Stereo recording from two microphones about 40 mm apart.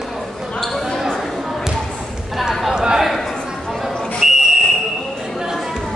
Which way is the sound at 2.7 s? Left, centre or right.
Centre.